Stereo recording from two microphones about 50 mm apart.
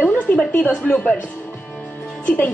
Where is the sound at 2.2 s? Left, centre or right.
Left.